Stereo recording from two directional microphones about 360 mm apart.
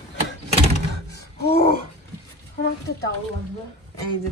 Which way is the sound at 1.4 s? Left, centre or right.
Left.